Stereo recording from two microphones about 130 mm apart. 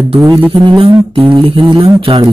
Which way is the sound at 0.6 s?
40° right (ahead or behind).